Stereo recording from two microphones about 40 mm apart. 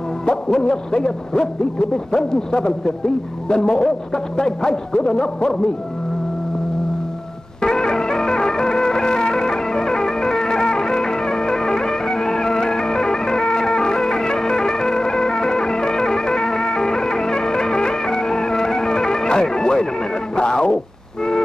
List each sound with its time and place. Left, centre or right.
0.2 s music: centre
7.6 s music: centre
20.3 s a sound: left